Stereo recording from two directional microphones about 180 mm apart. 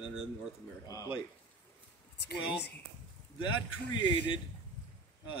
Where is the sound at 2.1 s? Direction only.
65° left (ahead or behind).